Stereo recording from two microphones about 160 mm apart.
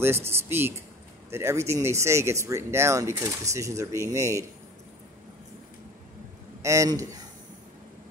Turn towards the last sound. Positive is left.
turn(degrees=-20)  # may be behind; listen again after turning